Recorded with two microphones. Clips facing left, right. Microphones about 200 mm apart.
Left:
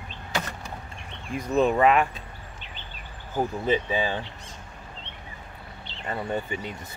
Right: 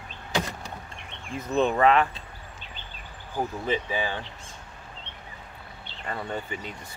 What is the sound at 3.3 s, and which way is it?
Speech, 20° left (ahead or behind).